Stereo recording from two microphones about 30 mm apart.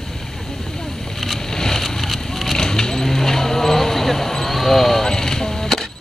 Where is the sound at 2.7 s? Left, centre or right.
Centre.